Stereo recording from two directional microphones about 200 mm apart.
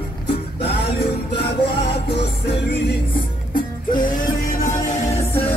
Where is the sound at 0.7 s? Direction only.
50° left (ahead or behind).